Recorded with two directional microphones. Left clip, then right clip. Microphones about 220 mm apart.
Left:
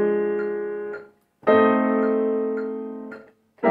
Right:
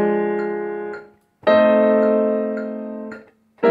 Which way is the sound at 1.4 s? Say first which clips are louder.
Right 4 dB; 50° right (ahead or behind).